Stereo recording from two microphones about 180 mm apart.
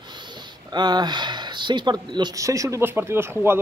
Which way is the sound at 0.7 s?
25° right (ahead or behind).